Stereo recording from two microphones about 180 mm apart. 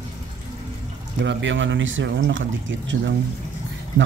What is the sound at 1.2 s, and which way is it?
Speech, 90° right.